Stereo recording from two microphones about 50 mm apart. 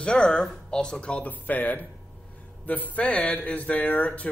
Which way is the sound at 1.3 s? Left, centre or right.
Left.